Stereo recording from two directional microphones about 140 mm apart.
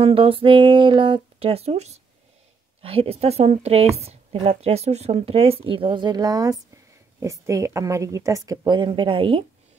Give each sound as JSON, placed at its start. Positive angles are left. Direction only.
{"t": 0.0, "sound": "a woman's voice", "side_deg": -40}